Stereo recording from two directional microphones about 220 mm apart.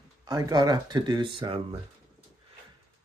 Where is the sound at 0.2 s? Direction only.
15° right (ahead or behind).